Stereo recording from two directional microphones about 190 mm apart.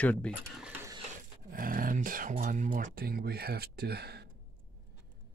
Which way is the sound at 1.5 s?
50° right (ahead or behind).